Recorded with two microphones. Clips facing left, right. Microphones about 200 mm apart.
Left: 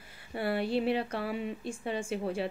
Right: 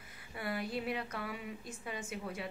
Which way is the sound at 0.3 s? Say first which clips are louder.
Left 8 dB; 30° left (ahead or behind).